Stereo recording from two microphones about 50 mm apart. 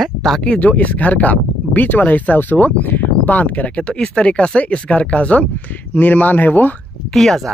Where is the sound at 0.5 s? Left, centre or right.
Left.